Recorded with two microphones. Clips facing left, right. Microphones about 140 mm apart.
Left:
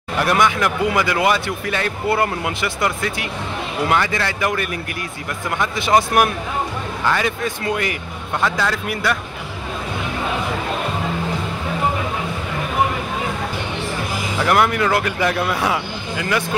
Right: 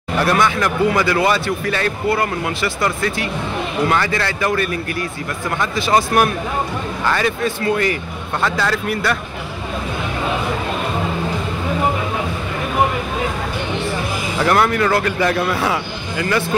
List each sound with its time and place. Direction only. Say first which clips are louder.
0.2 s speech: even; 15° left (ahead or behind)
14.4 s speech: right 1 dB; 10° left (ahead or behind)